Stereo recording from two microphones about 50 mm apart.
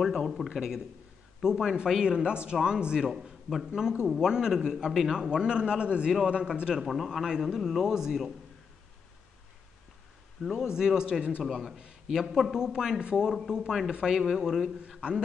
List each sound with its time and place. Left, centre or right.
0.5 s a man's voice: centre
6.7 s a man's voice: centre
10.4 s a man's voice: centre
11.4 s a man's voice: centre